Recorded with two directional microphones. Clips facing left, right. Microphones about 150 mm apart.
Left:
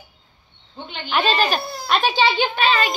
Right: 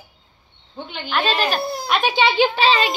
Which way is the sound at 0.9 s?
Centre (ahead or behind).